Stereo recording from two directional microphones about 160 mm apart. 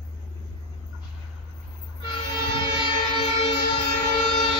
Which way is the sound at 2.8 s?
30° left (ahead or behind).